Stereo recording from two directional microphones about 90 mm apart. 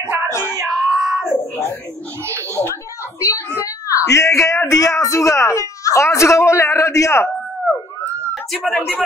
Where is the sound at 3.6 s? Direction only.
35° left (ahead or behind).